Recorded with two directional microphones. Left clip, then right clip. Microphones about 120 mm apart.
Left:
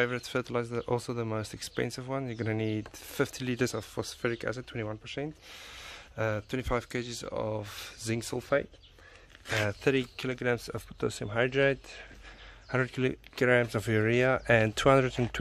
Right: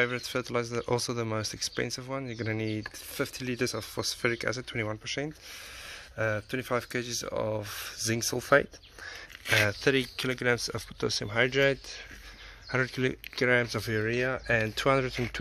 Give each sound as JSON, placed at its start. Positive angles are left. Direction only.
{"t": 0.0, "sound": "speech", "side_deg": 25}
{"t": 0.7, "sound": "speech", "side_deg": 5}
{"t": 1.5, "sound": "speech", "side_deg": 25}
{"t": 3.2, "sound": "speech", "side_deg": 40}
{"t": 3.7, "sound": "speech", "side_deg": 15}
{"t": 4.2, "sound": "speech", "side_deg": 5}
{"t": 6.1, "sound": "speech", "side_deg": 30}
{"t": 8.4, "sound": "speech", "side_deg": -15}
{"t": 9.8, "sound": "speech", "side_deg": 15}
{"t": 12.7, "sound": "speech", "side_deg": 25}
{"t": 13.9, "sound": "speech", "side_deg": 55}